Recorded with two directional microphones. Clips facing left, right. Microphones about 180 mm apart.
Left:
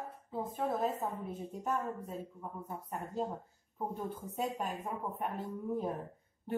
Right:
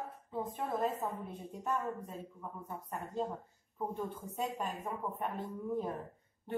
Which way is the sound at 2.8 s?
Centre (ahead or behind).